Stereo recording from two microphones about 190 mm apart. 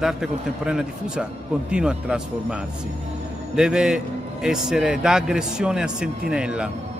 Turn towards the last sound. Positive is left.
turn(degrees=-5)  # may be behind; listen again after turning